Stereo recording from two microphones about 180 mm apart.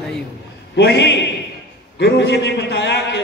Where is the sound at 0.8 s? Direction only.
70° left (ahead or behind).